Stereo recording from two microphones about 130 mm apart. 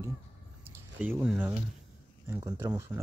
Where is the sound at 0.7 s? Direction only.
15° right (ahead or behind).